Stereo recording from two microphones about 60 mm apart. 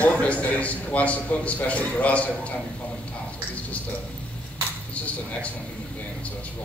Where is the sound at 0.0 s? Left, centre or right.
Left.